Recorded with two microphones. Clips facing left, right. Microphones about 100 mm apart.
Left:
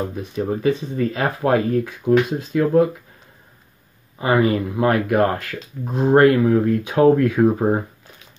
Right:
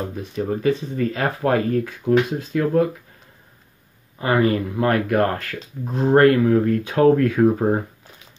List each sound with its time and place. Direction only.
0.2 s speech: 20° left (ahead or behind)
4.2 s speech: 15° left (ahead or behind)